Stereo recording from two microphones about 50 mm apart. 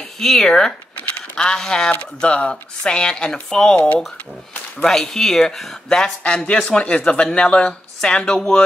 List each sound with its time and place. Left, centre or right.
0.2 s speech: centre; by 4.0 s left
4.8 s speech: centre